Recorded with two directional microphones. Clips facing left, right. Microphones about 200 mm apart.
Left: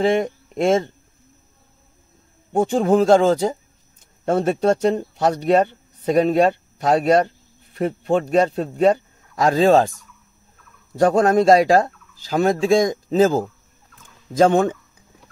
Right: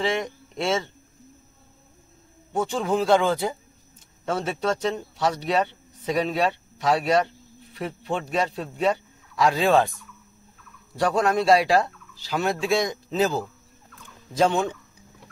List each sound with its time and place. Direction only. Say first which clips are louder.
0.0 s speech: left 7 dB; 50° left (ahead or behind)
2.5 s fowl: left 8 dB; 50° left (ahead or behind)
4.3 s speech: left 8 dB; 50° left (ahead or behind)
11.0 s fowl: left 7 dB; 45° left (ahead or behind)